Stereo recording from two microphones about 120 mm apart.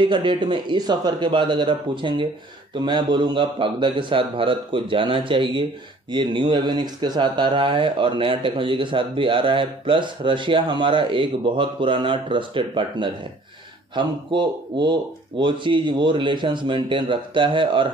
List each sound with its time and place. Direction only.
0.0 s speech: 40° right (ahead or behind)